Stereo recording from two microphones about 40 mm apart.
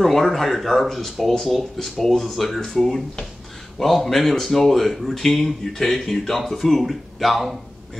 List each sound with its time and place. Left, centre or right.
0.0 s speech: centre